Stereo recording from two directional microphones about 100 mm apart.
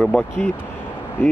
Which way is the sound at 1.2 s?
20° left (ahead or behind).